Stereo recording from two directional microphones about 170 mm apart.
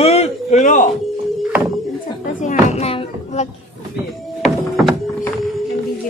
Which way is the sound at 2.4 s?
45° left (ahead or behind).